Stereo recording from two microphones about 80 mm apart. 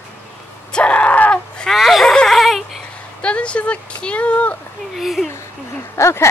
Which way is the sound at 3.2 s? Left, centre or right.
Centre.